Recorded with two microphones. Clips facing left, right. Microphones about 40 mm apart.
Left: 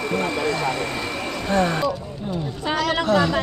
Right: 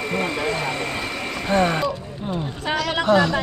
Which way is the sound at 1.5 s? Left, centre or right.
Right.